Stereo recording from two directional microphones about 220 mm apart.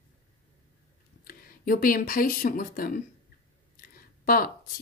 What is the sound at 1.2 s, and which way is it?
Speech, 40° left (ahead or behind).